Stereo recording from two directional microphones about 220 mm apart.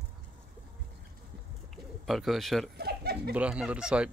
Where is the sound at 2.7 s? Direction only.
45° right (ahead or behind).